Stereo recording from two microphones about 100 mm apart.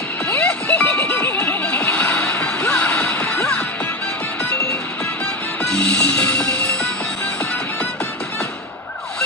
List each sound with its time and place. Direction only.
0.3 s music: 15° left (ahead or behind)
5.6 s music: 10° left (ahead or behind)